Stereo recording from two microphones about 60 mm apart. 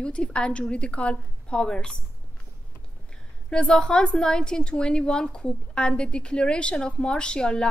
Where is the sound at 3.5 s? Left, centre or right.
Centre.